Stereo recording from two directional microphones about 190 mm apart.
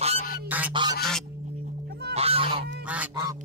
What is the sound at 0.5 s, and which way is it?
Honk, 10° right (ahead or behind).